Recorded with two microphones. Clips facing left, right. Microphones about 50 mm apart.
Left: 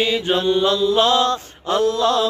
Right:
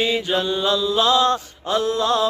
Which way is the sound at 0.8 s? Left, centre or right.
Left.